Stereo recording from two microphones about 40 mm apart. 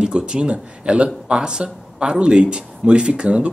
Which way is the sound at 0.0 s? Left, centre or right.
Right.